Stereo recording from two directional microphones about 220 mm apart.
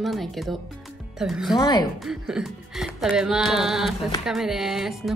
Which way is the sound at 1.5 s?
20° left (ahead or behind).